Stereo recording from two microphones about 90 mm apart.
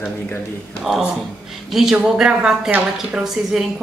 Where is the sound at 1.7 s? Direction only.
5° right (ahead or behind).